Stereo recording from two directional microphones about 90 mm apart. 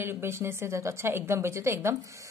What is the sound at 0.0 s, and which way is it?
A woman's voice, 25° right (ahead or behind).